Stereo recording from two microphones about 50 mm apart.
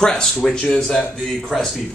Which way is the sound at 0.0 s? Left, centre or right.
Centre.